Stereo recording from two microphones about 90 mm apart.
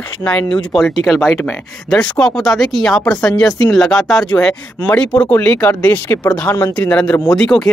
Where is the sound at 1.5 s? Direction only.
5° left (ahead or behind).